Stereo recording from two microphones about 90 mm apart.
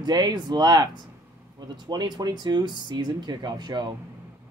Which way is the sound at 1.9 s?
50° right (ahead or behind).